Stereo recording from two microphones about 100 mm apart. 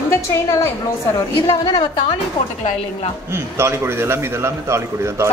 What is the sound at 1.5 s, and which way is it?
Speech, 55° left (ahead or behind).